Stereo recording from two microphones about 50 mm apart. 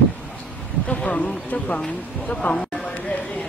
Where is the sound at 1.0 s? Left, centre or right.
Centre.